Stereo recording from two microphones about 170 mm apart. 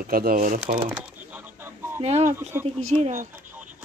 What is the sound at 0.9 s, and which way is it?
Bird, 10° right (ahead or behind).